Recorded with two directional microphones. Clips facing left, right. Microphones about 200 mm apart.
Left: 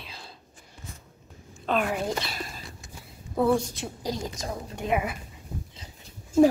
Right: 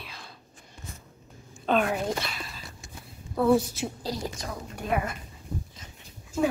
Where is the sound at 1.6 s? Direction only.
Centre (ahead or behind).